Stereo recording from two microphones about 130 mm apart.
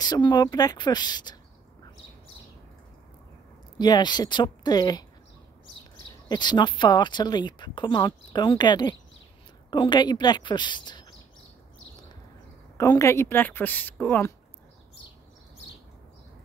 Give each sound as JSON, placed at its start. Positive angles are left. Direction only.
{"t": 0.0, "sound": "speech", "side_deg": 35}
{"t": 3.7, "sound": "speech", "side_deg": 35}
{"t": 6.2, "sound": "speech", "side_deg": 35}
{"t": 12.7, "sound": "a woman's voice", "side_deg": 25}